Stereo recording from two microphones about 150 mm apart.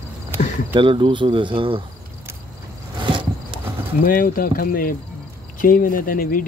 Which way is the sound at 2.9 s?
35° right (ahead or behind).